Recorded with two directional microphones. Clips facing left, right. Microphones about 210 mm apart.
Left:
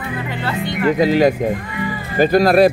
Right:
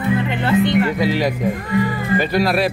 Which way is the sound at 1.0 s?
45° left (ahead or behind).